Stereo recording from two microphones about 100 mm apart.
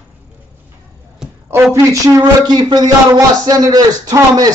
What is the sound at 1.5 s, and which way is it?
Speech, 30° right (ahead or behind).